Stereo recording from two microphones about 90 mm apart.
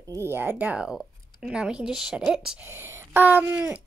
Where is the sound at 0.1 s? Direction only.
25° right (ahead or behind).